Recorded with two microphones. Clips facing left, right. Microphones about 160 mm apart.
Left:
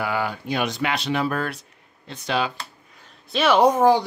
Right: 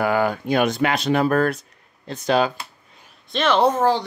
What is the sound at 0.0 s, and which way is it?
Speech, 45° right (ahead or behind).